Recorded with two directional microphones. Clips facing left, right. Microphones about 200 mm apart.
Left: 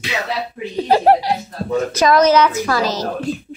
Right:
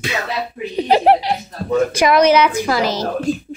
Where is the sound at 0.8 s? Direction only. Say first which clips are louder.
Even; 15° right (ahead or behind).